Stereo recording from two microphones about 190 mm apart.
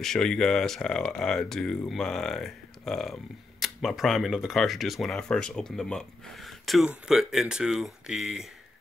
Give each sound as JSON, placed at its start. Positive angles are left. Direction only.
{"t": 0.0, "sound": "speech", "side_deg": 5}